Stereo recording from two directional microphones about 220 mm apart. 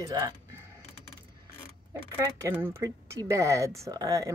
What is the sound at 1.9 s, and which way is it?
Speech, 10° right (ahead or behind).